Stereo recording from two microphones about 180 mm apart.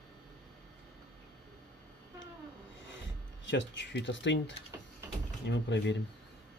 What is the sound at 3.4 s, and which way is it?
Speech, 85° left.